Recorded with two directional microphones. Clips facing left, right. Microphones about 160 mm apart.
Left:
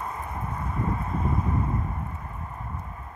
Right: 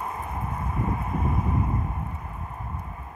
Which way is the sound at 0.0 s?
20° right (ahead or behind).